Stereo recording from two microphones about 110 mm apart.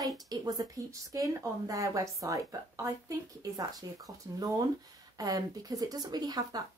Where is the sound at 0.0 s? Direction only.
35° right (ahead or behind).